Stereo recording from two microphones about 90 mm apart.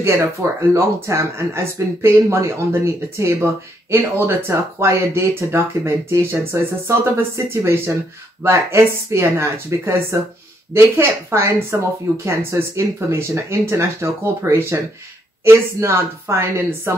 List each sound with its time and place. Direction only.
0.0 s speech: 30° right (ahead or behind)